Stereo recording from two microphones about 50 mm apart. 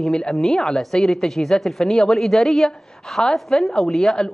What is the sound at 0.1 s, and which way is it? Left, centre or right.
A woman's voice, centre.